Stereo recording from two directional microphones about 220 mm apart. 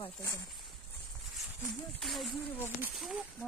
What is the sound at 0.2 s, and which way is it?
Speech, 15° left (ahead or behind).